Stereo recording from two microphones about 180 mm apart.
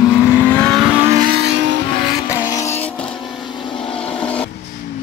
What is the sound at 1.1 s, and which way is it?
Vehicle, 55° right (ahead or behind).